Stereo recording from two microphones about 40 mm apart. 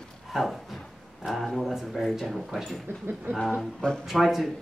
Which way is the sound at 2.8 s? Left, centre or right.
Right.